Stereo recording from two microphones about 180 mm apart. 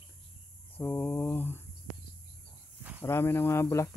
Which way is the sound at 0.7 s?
10° left (ahead or behind).